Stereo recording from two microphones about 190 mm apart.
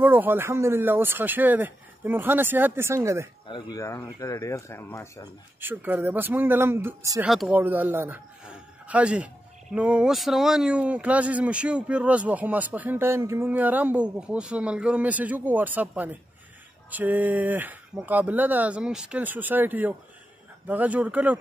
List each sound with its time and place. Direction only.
0.0 s speech: 10° right (ahead or behind)
3.4 s speech: 25° left (ahead or behind)
5.6 s a man's voice: 10° right (ahead or behind)